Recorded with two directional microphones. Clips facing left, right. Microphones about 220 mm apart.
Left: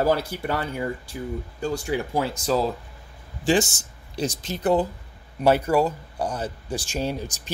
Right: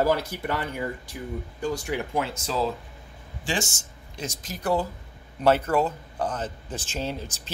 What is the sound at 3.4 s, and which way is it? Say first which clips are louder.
A man's voice: left 9 dB; 35° left (ahead or behind).